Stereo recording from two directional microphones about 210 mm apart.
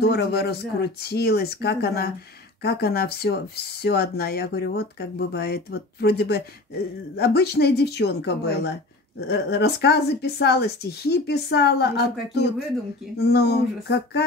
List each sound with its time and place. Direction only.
0.0 s a woman's voice: 50° left (ahead or behind)